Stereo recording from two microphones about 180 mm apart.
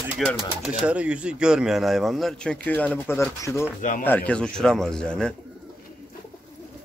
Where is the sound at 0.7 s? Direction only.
5° right (ahead or behind).